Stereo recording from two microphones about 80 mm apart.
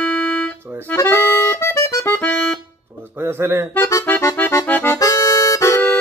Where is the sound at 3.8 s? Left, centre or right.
Left.